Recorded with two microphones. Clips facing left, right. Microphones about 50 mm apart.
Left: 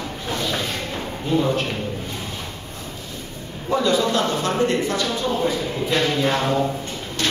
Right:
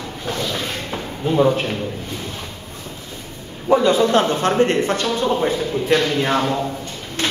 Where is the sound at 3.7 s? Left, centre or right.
Right.